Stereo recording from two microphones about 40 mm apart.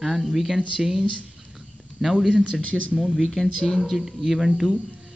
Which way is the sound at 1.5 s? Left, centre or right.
Centre.